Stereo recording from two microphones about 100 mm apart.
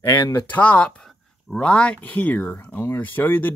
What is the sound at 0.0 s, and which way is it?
Speech, 45° left (ahead or behind).